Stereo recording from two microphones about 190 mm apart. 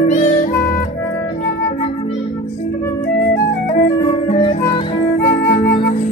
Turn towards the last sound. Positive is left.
turn(degrees=25)  # may be behind; listen again after turning